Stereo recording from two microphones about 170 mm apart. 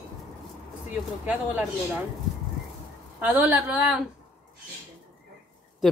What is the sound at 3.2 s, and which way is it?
Speech, 10° right (ahead or behind).